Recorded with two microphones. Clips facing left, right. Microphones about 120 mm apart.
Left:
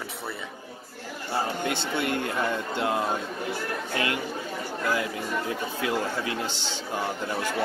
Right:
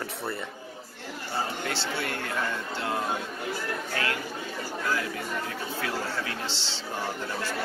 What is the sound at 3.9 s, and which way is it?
Speech, 20° left (ahead or behind).